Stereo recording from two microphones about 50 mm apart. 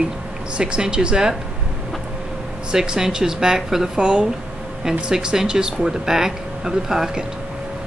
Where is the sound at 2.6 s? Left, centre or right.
Centre.